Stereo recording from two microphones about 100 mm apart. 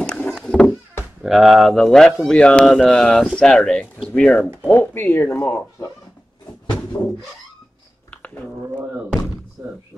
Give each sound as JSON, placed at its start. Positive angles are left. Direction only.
{"t": 0.0, "sound": "a sound", "side_deg": 10}
{"t": 1.2, "sound": "speech", "side_deg": 0}
{"t": 7.0, "sound": "speech", "side_deg": 15}